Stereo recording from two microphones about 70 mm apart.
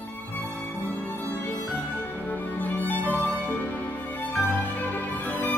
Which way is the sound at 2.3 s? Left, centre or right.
Left.